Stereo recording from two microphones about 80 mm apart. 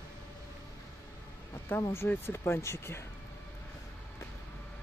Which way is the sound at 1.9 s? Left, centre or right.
Left.